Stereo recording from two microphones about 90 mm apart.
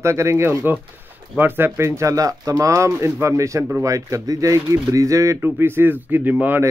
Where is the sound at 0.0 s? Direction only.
30° right (ahead or behind).